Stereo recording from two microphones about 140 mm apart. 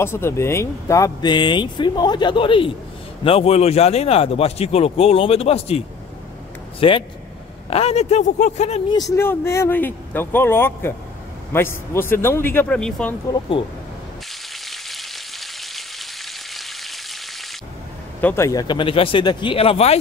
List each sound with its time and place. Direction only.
0.0 s speech: 20° left (ahead or behind); by 8.8 s 55° left (ahead or behind)
9.1 s speech: 15° left (ahead or behind)
12.6 s speech: 5° left (ahead or behind)
13.3 s speech: 35° left (ahead or behind)
14.7 s frying: centre (ahead or behind)
18.2 s speech: 20° left (ahead or behind); by 20.0 s 45° left (ahead or behind)